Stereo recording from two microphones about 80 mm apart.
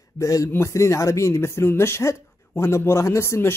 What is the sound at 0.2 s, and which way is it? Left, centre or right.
A man's voice, left.